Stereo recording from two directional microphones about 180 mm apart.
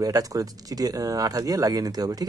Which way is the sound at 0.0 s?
20° right (ahead or behind).